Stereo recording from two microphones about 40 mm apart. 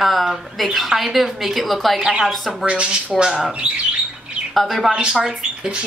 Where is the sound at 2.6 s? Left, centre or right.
Right.